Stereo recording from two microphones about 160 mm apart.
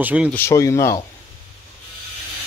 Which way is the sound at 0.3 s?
15° left (ahead or behind).